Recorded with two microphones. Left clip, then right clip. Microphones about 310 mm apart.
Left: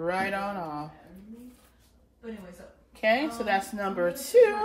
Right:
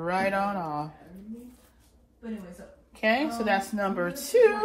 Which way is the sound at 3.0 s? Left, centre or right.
Centre.